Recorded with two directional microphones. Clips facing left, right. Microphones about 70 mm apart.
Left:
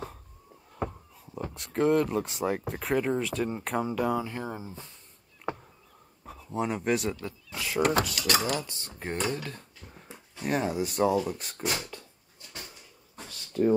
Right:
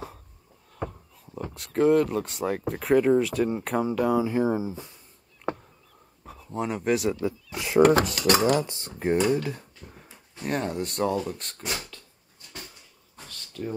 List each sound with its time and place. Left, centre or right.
0.7 s speech: centre
5.4 s a sound: centre
6.2 s speech: centre
7.2 s speech: centre
8.0 s speech: right
9.0 s speech: centre
10.3 s speech: centre
11.5 s speech: centre
13.1 s a sound: left